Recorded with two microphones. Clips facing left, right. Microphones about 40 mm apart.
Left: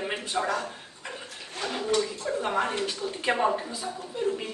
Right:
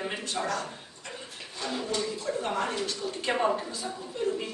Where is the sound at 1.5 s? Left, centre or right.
Left.